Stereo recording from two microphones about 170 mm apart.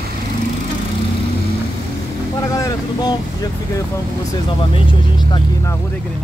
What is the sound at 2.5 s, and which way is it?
Vehicle, 20° left (ahead or behind).